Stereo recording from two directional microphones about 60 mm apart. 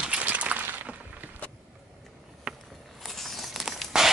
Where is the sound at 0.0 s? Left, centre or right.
Right.